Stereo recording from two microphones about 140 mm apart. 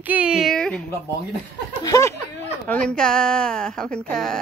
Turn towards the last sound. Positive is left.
turn(degrees=5)  # may be behind; listen again after turning